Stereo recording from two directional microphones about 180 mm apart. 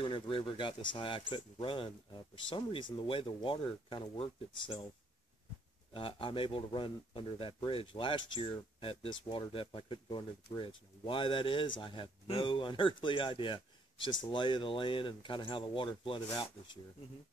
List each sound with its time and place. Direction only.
0.0 s speech: 30° left (ahead or behind)
5.9 s speech: 30° left (ahead or behind)